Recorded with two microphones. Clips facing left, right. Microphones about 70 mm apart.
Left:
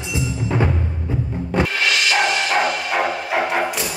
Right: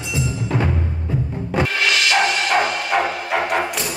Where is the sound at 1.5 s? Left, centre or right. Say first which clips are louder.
Even; centre.